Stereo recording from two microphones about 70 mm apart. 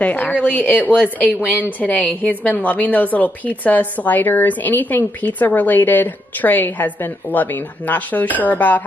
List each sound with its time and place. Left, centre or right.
0.0 s a woman's voice: left